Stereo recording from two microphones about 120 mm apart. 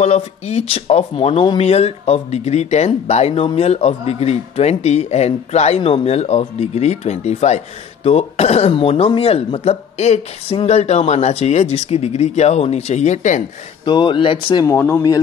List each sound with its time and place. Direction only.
0.0 s speech: 60° left (ahead or behind); by 13.4 s 85° left
13.8 s speech: 40° left (ahead or behind)
14.7 s speech: 25° left (ahead or behind)